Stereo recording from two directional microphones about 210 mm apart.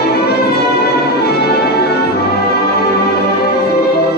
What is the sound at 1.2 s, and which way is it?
Music, 50° left (ahead or behind).